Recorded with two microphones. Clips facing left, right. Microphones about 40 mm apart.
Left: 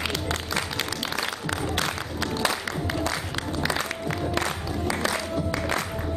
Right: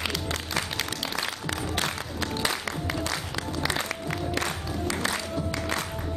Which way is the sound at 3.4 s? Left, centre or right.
Left.